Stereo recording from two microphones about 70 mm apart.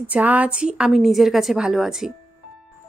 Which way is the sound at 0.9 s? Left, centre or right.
Centre.